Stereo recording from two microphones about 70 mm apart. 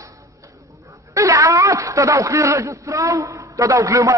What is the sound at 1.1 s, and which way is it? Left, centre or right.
Speech, right.